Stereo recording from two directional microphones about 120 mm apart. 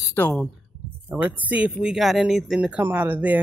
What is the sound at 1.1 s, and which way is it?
Speech, 10° right (ahead or behind).